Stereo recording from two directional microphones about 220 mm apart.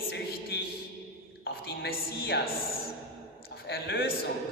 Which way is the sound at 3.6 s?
45° left (ahead or behind).